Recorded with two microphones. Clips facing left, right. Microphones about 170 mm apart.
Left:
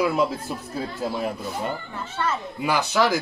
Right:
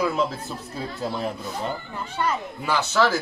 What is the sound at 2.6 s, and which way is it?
Speech, 15° left (ahead or behind).